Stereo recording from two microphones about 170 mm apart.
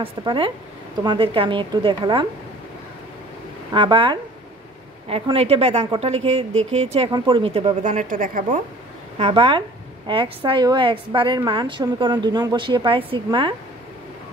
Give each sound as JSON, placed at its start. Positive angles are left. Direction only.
{"t": 0.0, "sound": "a woman's voice", "side_deg": -30}
{"t": 3.7, "sound": "a woman's voice", "side_deg": -30}
{"t": 9.2, "sound": "a woman's voice", "side_deg": -30}